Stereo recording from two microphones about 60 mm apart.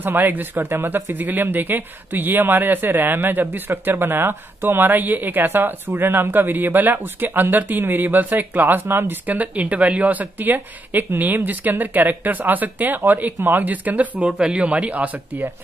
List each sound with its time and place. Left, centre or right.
0.0 s speech: right
9.3 s speech: right
14.2 s speech: centre